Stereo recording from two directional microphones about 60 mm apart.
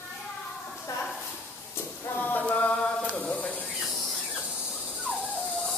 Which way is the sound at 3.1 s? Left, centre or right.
Left.